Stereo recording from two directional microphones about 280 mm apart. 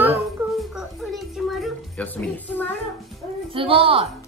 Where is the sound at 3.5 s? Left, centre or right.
Centre.